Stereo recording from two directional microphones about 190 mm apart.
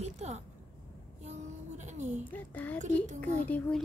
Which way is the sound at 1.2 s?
35° right (ahead or behind).